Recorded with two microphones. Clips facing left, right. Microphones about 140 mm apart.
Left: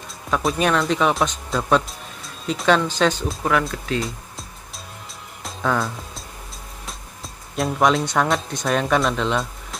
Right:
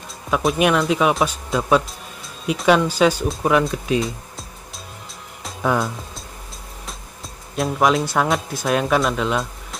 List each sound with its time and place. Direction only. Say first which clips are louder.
0.3 s speech: right 2 dB; 5° right (ahead or behind)
7.5 s speech: right 1 dB; centre (ahead or behind)